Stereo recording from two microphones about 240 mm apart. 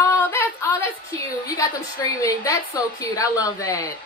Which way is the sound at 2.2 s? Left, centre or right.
Centre.